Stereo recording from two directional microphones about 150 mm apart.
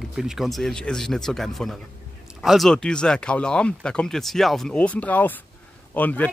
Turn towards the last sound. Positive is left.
turn(degrees=10)  # may be behind; listen again after turning